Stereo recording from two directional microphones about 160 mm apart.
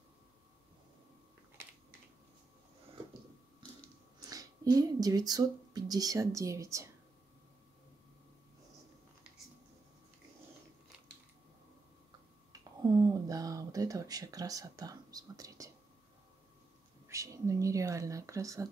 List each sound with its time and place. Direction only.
4.2 s speech: 20° right (ahead or behind)
12.8 s a sound: 25° right (ahead or behind)
17.1 s speech: 20° right (ahead or behind)